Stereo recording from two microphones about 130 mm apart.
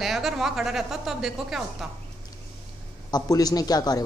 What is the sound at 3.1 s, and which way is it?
Speech, 30° left (ahead or behind).